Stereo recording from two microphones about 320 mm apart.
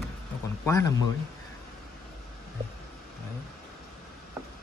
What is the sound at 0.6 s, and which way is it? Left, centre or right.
Speech, centre.